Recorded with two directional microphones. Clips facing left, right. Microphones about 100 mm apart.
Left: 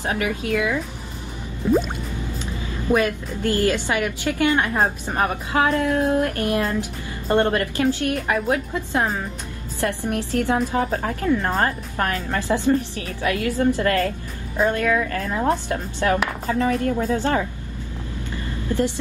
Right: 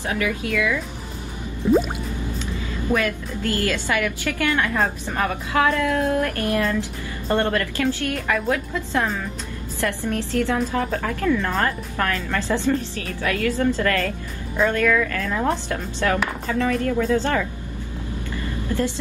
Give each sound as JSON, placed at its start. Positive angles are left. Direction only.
{"t": 0.1, "sound": "a woman's voice", "side_deg": 30}
{"t": 1.7, "sound": "drip", "side_deg": -5}
{"t": 2.9, "sound": "a woman's voice", "side_deg": 25}
{"t": 16.4, "sound": "speech", "side_deg": 30}
{"t": 18.7, "sound": "a woman's voice", "side_deg": 15}